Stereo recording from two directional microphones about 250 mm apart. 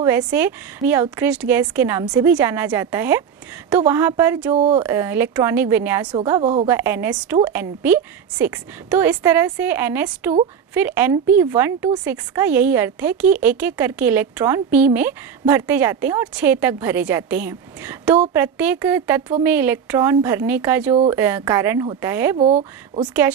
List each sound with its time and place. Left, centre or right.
0.0 s a woman's voice: centre
4.6 s speech: right
4.8 s a woman's voice: centre
22.4 s speech: right